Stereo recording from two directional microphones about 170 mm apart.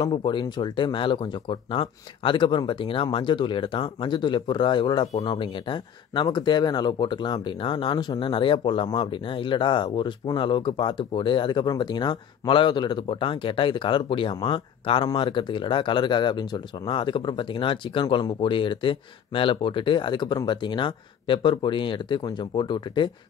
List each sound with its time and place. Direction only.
0.0 s speech: 30° left (ahead or behind)